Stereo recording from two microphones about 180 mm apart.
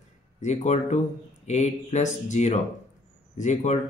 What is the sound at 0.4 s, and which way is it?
Speech, 40° left (ahead or behind).